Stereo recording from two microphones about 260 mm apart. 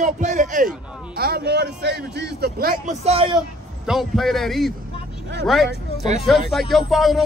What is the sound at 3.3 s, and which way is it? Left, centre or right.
Speech, centre.